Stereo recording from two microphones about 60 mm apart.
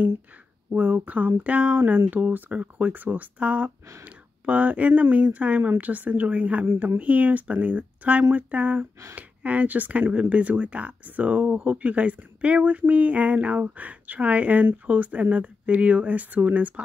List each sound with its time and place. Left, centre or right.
0.7 s speech: right
1.8 s speech: right